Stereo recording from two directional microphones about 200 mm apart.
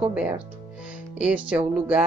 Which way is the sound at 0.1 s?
5° right (ahead or behind).